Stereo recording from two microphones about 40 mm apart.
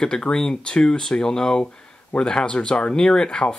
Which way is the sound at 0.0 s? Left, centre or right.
Centre.